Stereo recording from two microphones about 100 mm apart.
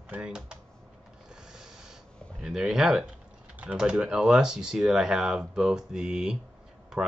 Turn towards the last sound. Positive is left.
turn(degrees=-5)  # may be behind; listen again after turning